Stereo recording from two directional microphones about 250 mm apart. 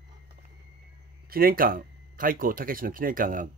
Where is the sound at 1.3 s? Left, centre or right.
Right.